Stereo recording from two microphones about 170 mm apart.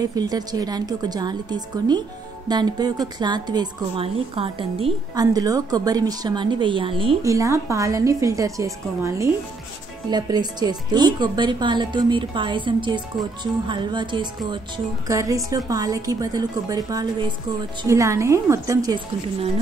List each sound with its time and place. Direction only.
0.0 s a woman's voice: 20° right (ahead or behind)
5.1 s a woman's voice: 20° right (ahead or behind)
7.2 s a woman's voice: 20° right (ahead or behind)